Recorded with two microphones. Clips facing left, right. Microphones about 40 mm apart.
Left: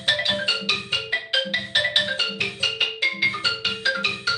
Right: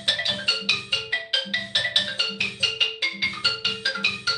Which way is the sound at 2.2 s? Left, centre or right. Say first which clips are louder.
Left 1 dB; centre.